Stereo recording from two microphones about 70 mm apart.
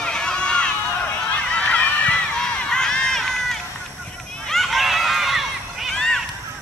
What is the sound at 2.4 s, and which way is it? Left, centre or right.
Run, centre.